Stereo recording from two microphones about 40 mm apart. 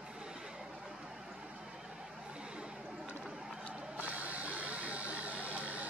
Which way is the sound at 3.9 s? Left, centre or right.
Right.